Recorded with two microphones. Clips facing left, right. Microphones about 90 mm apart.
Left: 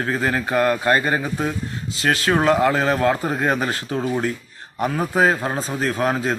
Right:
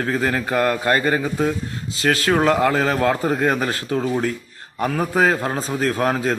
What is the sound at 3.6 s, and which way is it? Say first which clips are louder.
Speech: right 2 dB; 25° left (ahead or behind).